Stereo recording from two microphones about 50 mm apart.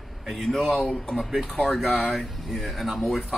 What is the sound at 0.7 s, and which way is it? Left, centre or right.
Speech, left.